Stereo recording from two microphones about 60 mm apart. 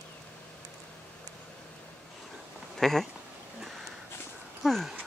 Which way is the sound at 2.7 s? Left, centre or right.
Centre.